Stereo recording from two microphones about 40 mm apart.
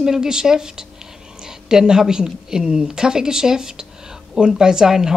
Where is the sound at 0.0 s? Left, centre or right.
Centre.